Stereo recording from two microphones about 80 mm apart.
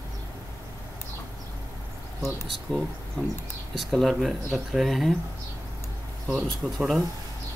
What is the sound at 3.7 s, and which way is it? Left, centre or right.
Speech, centre.